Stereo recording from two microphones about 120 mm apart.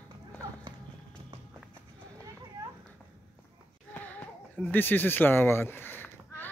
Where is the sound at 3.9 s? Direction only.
15° left (ahead or behind).